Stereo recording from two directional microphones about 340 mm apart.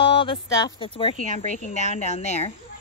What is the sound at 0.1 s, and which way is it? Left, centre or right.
A woman's voice, centre.